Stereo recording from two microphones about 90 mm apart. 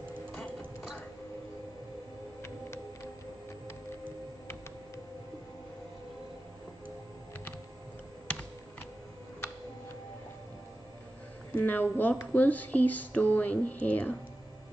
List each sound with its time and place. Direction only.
0.3 s music: 15° left (ahead or behind)
11.5 s speech: 20° left (ahead or behind)